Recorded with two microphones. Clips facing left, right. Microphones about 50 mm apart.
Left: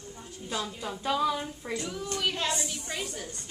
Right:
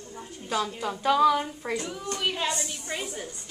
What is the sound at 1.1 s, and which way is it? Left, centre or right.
Speech, right.